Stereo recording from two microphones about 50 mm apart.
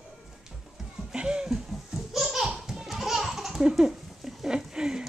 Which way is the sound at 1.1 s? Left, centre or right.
Centre.